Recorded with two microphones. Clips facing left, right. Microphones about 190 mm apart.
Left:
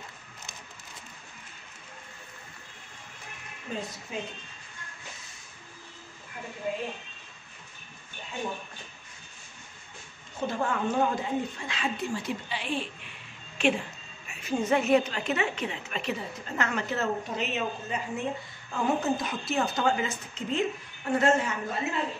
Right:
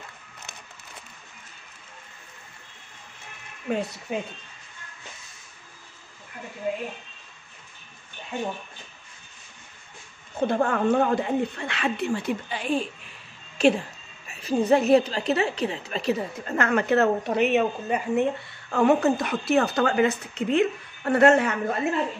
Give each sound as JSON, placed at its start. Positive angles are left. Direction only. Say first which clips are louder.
{"t": 3.7, "sound": "a woman's voice", "louder": "right 8 dB", "side_deg": -70}
{"t": 10.4, "sound": "a woman's voice", "louder": "right 6 dB", "side_deg": -60}
{"t": 16.4, "sound": "speech", "louder": "right 8 dB", "side_deg": -55}